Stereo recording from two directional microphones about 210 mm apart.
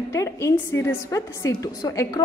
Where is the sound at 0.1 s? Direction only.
15° left (ahead or behind).